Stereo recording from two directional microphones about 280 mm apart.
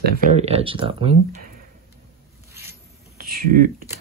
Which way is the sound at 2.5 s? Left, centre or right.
Centre.